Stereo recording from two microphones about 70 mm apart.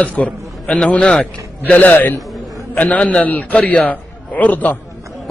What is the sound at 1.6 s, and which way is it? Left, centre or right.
A man's voice, left.